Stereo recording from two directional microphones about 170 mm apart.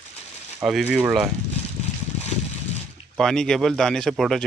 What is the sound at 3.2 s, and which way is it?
Speech, 5° left (ahead or behind).